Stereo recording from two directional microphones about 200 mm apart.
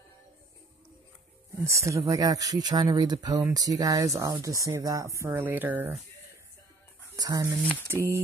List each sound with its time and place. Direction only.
1.6 s speech: 15° right (ahead or behind)
7.2 s speech: 15° right (ahead or behind)